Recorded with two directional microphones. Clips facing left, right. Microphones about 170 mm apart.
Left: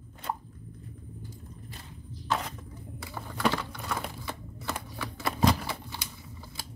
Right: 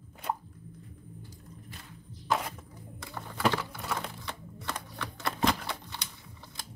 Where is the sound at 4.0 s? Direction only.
5° left (ahead or behind).